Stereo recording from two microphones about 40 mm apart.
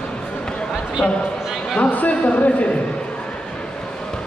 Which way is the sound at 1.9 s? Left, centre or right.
Left.